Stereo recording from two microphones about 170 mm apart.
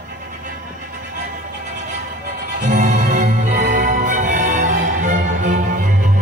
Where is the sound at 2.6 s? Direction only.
45° right (ahead or behind).